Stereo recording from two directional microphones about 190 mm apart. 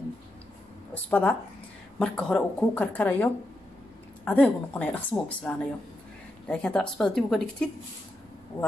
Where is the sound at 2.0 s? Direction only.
5° left (ahead or behind).